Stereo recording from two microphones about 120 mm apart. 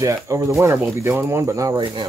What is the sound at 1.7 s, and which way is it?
Speech, 40° right (ahead or behind).